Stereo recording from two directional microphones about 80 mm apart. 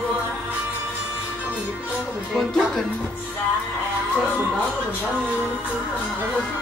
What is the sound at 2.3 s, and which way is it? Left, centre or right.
Speech, centre.